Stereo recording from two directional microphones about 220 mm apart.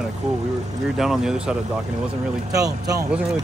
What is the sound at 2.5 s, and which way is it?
Speech, 15° right (ahead or behind).